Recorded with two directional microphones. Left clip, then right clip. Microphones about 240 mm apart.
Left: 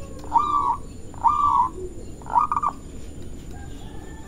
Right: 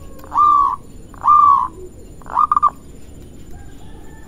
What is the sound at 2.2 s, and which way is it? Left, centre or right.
Frog, right.